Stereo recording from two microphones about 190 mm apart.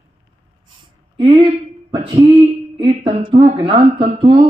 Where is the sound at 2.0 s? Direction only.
30° right (ahead or behind).